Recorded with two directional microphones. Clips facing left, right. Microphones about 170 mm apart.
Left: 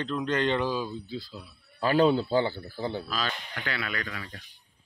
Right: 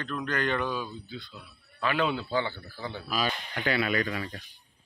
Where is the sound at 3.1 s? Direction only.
10° right (ahead or behind).